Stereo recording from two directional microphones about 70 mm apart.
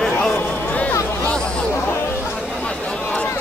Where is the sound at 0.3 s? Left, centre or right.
Left.